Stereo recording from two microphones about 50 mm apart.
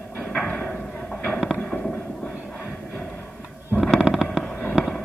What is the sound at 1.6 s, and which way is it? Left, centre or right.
Fireworks, centre.